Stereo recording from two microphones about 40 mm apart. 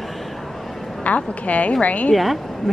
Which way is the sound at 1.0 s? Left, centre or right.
Left.